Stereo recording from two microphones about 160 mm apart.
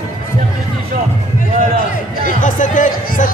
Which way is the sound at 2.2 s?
55° left (ahead or behind).